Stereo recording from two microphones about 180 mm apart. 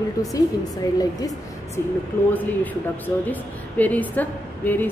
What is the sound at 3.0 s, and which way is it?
A woman's voice, 10° left (ahead or behind).